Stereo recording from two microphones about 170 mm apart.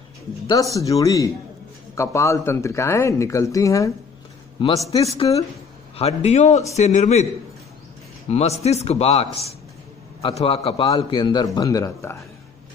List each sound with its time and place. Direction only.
0.7 s a man's voice: 20° left (ahead or behind); by 7.2 s 40° left (ahead or behind)
8.3 s a man's voice: 40° left (ahead or behind); by 12.2 s 15° left (ahead or behind)